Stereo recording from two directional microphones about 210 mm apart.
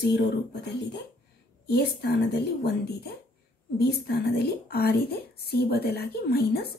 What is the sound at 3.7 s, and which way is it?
Speech, 50° left (ahead or behind).